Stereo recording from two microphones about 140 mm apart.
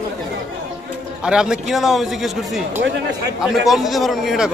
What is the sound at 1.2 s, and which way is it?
A man's voice, 5° right (ahead or behind).